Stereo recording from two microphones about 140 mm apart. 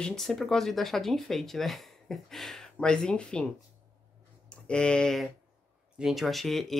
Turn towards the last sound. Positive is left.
turn(degrees=0)  # may be behind; listen again after turning